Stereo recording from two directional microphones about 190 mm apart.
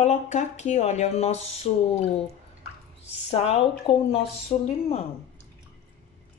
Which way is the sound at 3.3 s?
30° left (ahead or behind).